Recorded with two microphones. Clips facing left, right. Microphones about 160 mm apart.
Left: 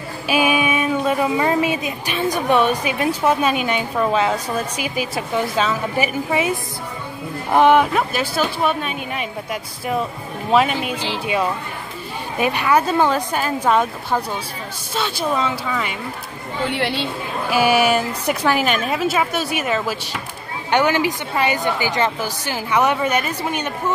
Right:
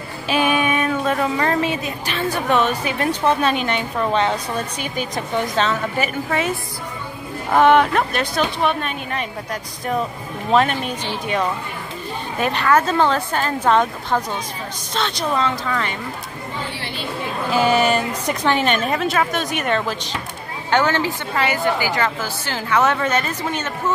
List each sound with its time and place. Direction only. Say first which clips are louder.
0.3 s a woman's voice: even; 10° left (ahead or behind)
7.5 s speech: even; 10° left (ahead or behind)
12.4 s a woman's voice: even; 10° left (ahead or behind)
16.7 s a woman's voice: left 9 dB; 80° left
17.5 s a woman's voice: left 1 dB; 10° left (ahead or behind)